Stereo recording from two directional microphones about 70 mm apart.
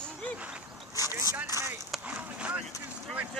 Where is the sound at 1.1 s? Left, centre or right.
Right.